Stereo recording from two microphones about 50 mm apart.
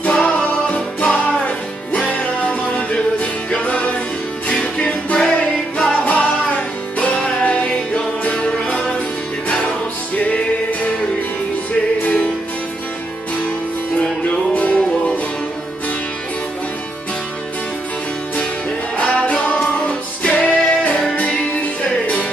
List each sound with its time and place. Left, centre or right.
0.0 s music: left
14.5 s music: left
18.9 s music: left